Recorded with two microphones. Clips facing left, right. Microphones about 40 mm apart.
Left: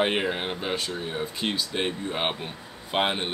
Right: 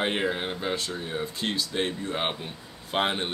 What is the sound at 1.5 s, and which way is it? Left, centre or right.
Speech, centre.